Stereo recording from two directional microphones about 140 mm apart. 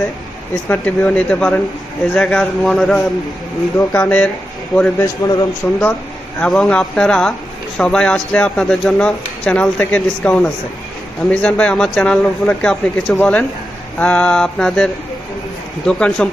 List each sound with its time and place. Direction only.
0.7 s a man's voice: 10° left (ahead or behind)
5.0 s speech: 25° left (ahead or behind)
6.4 s speech: 5° left (ahead or behind)